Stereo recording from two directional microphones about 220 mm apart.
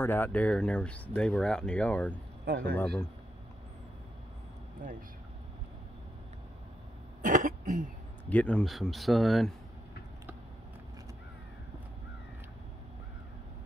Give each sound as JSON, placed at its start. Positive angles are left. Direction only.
{"t": 0.0, "sound": "speech", "side_deg": 10}
{"t": 2.4, "sound": "speech", "side_deg": -45}
{"t": 7.2, "sound": "throat clearing", "side_deg": -35}
{"t": 8.3, "sound": "speech", "side_deg": 5}